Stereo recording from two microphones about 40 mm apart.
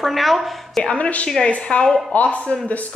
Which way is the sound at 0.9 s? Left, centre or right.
Left.